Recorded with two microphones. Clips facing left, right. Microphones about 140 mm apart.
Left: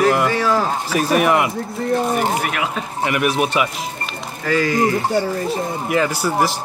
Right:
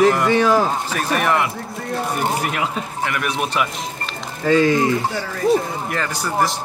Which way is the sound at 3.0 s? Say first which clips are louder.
Left 5 dB; 15° left (ahead or behind).